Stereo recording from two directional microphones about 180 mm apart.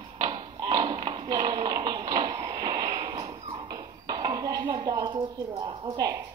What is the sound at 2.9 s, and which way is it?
Dog, 30° right (ahead or behind).